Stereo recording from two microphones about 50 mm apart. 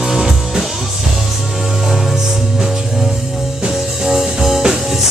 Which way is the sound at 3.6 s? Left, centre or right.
Centre.